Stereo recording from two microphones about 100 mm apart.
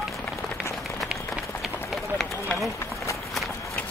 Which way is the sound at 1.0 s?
Centre (ahead or behind).